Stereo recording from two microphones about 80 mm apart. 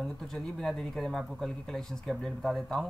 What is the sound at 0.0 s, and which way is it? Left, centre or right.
Speech, centre.